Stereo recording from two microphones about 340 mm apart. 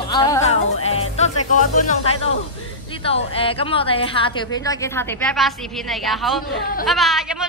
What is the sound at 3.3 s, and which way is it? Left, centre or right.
Music, centre.